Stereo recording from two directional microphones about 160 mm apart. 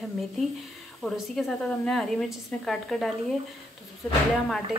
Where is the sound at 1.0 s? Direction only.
Centre (ahead or behind).